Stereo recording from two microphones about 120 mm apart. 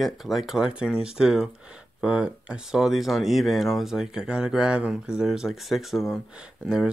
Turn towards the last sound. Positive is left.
turn(degrees=-5)  # may be behind; listen again after turning